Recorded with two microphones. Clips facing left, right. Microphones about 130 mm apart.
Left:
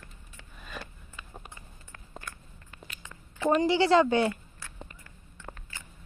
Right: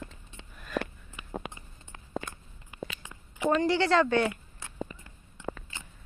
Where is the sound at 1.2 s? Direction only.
20° right (ahead or behind).